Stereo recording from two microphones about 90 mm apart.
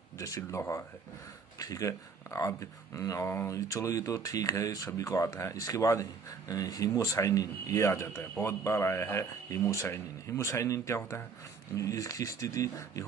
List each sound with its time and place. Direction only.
0.4 s speech: 30° left (ahead or behind)
3.3 s speech: 25° left (ahead or behind)
3.5 s speech: 35° left (ahead or behind)